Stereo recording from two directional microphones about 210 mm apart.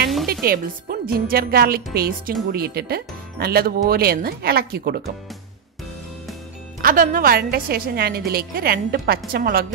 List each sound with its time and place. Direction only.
0.3 s speech: 45° right (ahead or behind)
6.8 s speech: 40° right (ahead or behind)